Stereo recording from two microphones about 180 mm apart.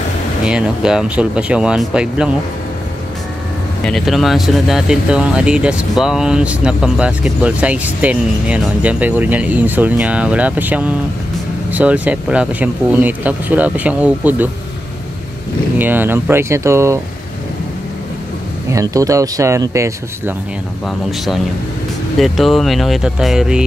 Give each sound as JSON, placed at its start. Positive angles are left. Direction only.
{"t": 0.5, "sound": "speech", "side_deg": -5}
{"t": 3.8, "sound": "speech", "side_deg": 0}
{"t": 15.8, "sound": "speech", "side_deg": -10}
{"t": 18.7, "sound": "speech", "side_deg": -20}
{"t": 22.2, "sound": "speech", "side_deg": 0}